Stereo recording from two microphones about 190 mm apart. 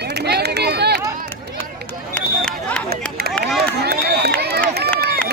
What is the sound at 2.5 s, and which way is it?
Chatter, 5° left (ahead or behind).